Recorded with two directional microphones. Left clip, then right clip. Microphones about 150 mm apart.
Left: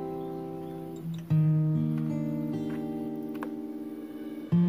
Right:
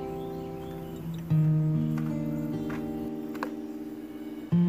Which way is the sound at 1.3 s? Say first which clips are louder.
Even; centre (ahead or behind).